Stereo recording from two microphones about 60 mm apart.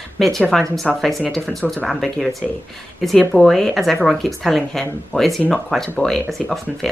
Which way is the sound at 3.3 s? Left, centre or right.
Centre.